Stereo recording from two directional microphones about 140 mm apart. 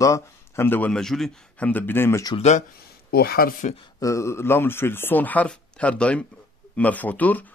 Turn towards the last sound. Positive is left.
turn(degrees=10)  # may be behind; listen again after turning